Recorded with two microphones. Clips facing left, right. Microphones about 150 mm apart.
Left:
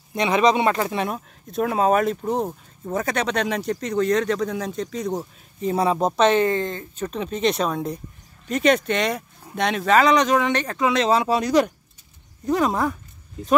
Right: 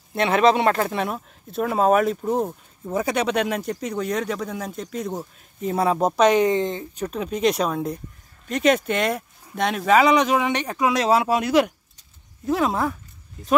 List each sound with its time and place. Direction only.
0.5 s speech: 5° left (ahead or behind)